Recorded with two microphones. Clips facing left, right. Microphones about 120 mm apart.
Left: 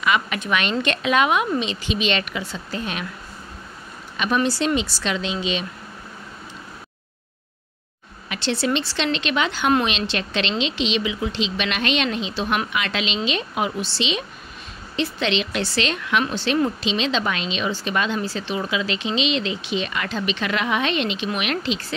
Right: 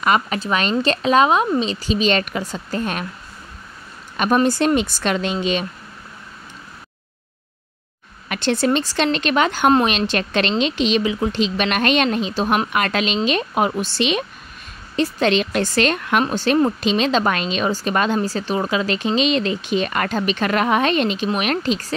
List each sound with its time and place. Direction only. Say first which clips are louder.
0.0 s speech: right 3 dB; 40° right (ahead or behind)
4.2 s speech: right 4 dB; 45° right (ahead or behind)
8.3 s speech: right 4 dB; 50° right (ahead or behind)